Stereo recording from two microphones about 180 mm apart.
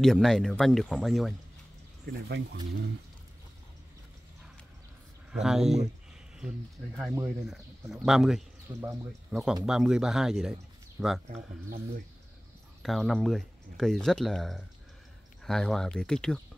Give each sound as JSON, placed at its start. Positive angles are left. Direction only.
{"t": 0.0, "sound": "speech", "side_deg": 0}
{"t": 2.2, "sound": "speech", "side_deg": -65}
{"t": 5.3, "sound": "speech", "side_deg": -5}
{"t": 7.2, "sound": "speech", "side_deg": -5}
{"t": 12.8, "sound": "speech", "side_deg": 0}